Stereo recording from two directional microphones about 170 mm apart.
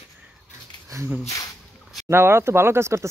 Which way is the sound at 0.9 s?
15° right (ahead or behind).